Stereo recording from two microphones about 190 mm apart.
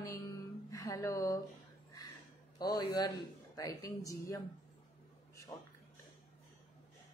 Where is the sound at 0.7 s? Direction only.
20° left (ahead or behind).